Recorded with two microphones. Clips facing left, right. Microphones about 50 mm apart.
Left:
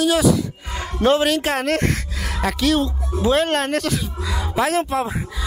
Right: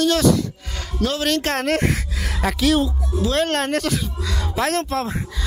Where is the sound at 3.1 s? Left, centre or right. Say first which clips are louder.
Left 1 dB; left.